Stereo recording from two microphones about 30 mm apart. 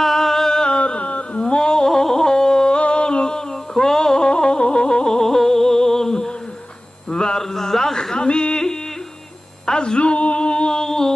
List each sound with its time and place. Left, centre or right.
0.0 s music: centre
0.5 s music: left
0.7 s music: left; by 4.3 s centre
4.3 s music: left
5.0 s music: centre
7.2 s a sound: centre
9.8 s a sound: left
10.5 s music: left